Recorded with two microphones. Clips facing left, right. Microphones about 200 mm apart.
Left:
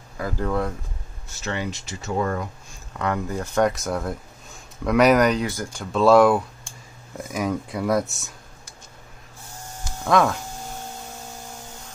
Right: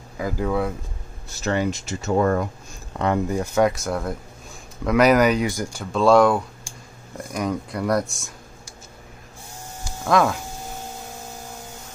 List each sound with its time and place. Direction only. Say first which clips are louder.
0.2 s speech: right 2 dB; 5° right (ahead or behind)
1.4 s speech: right 6 dB; 45° right (ahead or behind)
2.9 s speech: right 3 dB; 30° right (ahead or behind)
3.3 s speech: left 1 dB; 10° right (ahead or behind)
5.9 s speech: left 1 dB; centre (ahead or behind)
9.8 s a sound: even; centre (ahead or behind)